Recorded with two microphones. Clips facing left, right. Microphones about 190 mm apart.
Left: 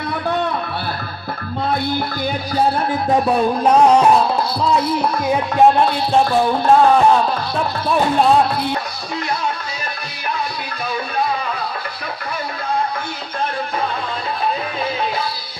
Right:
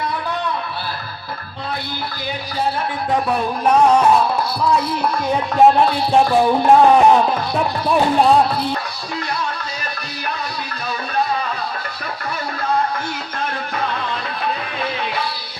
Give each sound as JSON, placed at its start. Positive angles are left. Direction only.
{"t": 3.3, "sound": "music", "side_deg": 30}
{"t": 5.3, "sound": "music", "side_deg": 0}
{"t": 6.1, "sound": "music", "side_deg": -10}